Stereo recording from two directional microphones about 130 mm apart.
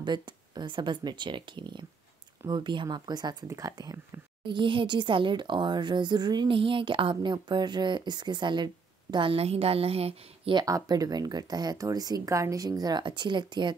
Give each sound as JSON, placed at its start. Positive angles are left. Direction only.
{"t": 0.0, "sound": "speech", "side_deg": -35}
{"t": 4.5, "sound": "a woman's voice", "side_deg": -40}
{"t": 10.5, "sound": "speech", "side_deg": -30}